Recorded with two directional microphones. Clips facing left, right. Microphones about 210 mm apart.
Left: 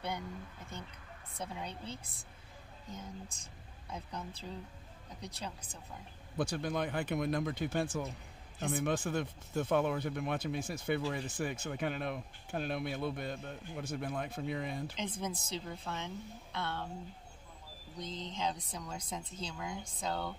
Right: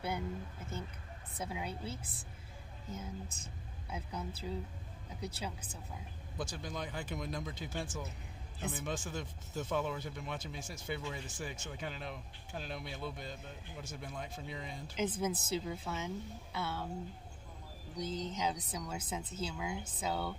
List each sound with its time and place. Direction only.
1.4 s speech: 5° right (ahead or behind)
6.3 s speech: 60° left (ahead or behind)
15.0 s speech: 5° right (ahead or behind)
17.9 s speech: 5° right (ahead or behind)